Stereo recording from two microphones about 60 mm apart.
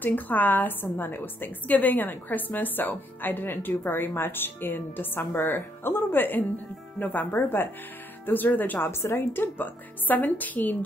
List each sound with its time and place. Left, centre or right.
0.0 s a woman's voice: left